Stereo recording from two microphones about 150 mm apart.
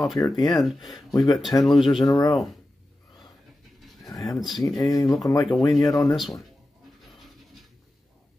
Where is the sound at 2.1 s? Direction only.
25° left (ahead or behind).